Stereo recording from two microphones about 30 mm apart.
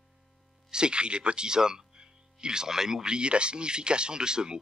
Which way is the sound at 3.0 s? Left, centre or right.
Right.